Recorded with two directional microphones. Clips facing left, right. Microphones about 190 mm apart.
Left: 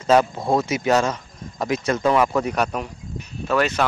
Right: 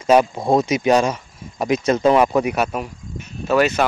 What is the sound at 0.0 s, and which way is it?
Speech, 15° right (ahead or behind).